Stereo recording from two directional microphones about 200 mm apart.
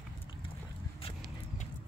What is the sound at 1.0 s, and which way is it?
Horse, 30° left (ahead or behind).